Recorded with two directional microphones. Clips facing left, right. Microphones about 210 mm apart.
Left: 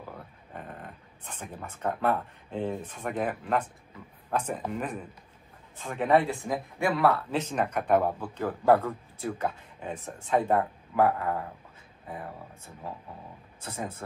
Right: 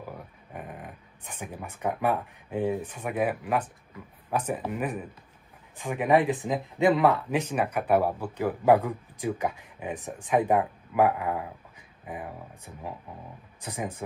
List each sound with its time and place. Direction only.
0.5 s speech: 10° right (ahead or behind)